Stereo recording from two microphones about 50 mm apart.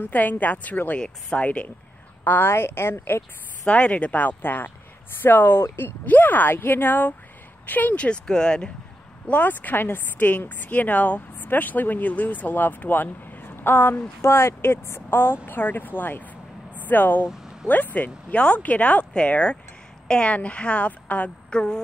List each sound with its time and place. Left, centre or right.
0.0 s speech: left
0.9 s speech: left
2.2 s a woman's voice: left
2.5 s speech: left
3.6 s speech: left
6.0 s speech: left; by 8.7 s centre
9.3 s speech: left
14.2 s speech: left
17.3 s vehicle: centre
17.9 s speech: left
21.5 s speech: centre